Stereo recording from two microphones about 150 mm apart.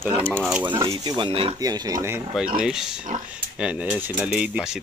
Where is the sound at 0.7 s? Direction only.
35° right (ahead or behind).